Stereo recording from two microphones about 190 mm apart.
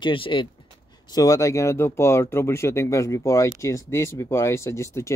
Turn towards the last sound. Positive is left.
turn(degrees=15)  # may be behind; listen again after turning